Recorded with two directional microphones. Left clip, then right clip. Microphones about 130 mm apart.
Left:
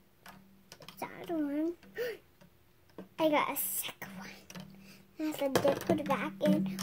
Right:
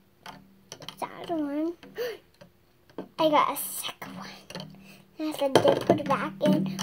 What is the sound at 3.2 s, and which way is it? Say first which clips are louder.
Speech: right 7 dB; 25° left (ahead or behind).